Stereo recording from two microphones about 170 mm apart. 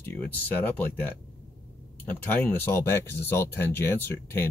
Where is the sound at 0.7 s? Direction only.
10° left (ahead or behind).